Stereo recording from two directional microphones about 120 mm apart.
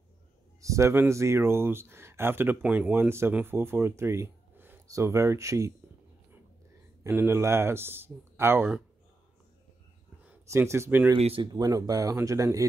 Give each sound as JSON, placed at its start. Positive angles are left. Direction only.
{"t": 0.6, "sound": "speech", "side_deg": -25}
{"t": 7.0, "sound": "speech", "side_deg": -20}
{"t": 10.5, "sound": "speech", "side_deg": -25}
{"t": 11.1, "sound": "speech", "side_deg": -55}
{"t": 11.5, "sound": "speech", "side_deg": -30}